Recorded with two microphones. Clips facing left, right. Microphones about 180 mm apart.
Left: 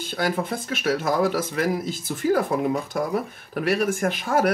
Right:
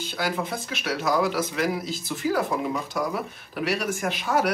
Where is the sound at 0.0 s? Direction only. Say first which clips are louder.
Left 3 dB; 50° left (ahead or behind).